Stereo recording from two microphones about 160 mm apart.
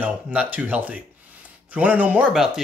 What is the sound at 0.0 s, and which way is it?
Speech, 10° right (ahead or behind).